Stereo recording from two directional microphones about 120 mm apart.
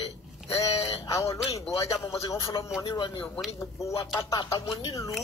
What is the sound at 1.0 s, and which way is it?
Speech, 25° left (ahead or behind).